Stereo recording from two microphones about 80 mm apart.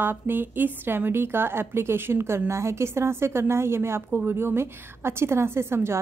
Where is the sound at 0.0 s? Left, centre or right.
Right.